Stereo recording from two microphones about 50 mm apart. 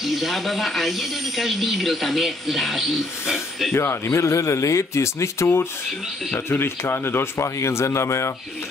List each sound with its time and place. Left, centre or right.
0.0 s speech: centre
3.7 s a man's voice: left
6.3 s speech: left
7.4 s a man's voice: left